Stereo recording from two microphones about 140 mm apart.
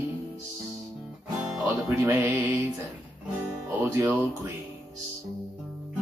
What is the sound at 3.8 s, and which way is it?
Speech, 20° right (ahead or behind).